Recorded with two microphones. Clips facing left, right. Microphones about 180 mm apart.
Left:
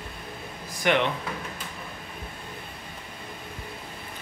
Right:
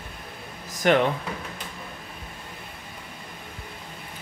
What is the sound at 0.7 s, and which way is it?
Speech, 40° right (ahead or behind).